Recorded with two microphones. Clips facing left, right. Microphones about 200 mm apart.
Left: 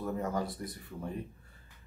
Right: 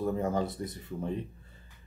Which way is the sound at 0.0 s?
25° right (ahead or behind).